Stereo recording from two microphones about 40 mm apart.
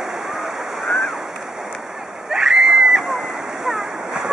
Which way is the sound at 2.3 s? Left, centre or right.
Centre.